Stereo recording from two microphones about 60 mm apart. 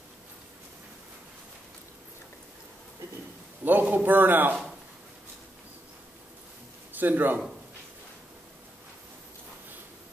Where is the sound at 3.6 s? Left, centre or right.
Right.